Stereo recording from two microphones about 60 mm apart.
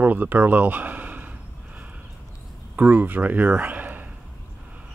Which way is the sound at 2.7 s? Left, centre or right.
Right.